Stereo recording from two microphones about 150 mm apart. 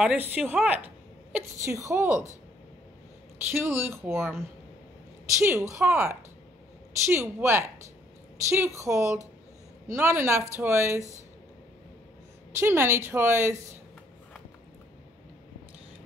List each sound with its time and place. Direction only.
0.0 s a woman's voice: 10° right (ahead or behind)
3.5 s a woman's voice: 15° right (ahead or behind)
12.5 s a woman's voice: 15° right (ahead or behind)